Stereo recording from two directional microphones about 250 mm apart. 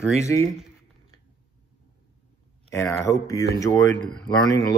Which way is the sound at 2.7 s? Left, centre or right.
Centre.